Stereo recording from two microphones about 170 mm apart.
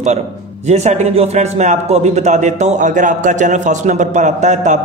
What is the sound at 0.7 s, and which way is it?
Speech, 40° right (ahead or behind).